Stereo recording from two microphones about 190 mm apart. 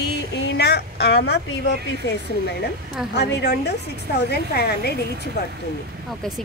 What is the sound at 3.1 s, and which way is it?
A woman's voice, 60° left (ahead or behind).